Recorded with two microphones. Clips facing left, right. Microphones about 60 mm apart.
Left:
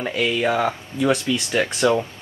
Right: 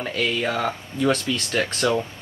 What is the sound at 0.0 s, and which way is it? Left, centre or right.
Speech, centre.